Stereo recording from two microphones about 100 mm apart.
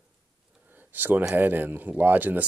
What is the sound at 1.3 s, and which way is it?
Speech, 20° right (ahead or behind).